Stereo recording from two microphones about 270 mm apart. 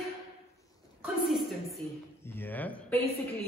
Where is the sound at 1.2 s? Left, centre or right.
Centre.